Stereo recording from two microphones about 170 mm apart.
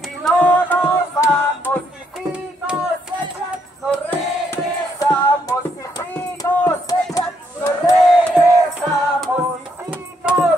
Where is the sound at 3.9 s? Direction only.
10° left (ahead or behind).